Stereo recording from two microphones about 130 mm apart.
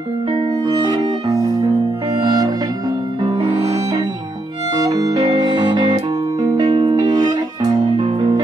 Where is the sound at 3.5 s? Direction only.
55° right (ahead or behind).